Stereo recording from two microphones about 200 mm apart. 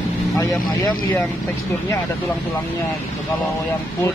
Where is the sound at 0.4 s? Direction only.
15° left (ahead or behind).